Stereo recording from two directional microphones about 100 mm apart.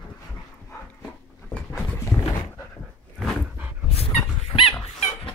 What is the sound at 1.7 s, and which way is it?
Dog, 30° left (ahead or behind).